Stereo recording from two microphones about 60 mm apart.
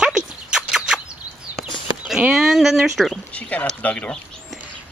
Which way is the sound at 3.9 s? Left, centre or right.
Centre.